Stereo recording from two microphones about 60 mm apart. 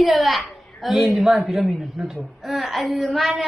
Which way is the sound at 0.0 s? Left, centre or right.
Centre.